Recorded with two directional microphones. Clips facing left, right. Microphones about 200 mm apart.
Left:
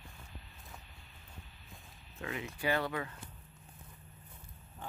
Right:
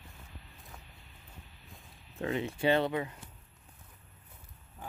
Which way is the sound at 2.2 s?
25° right (ahead or behind).